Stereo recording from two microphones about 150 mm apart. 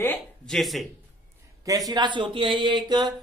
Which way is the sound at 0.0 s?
10° left (ahead or behind).